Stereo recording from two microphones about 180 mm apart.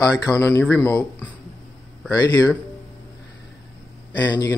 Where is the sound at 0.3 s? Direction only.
15° left (ahead or behind).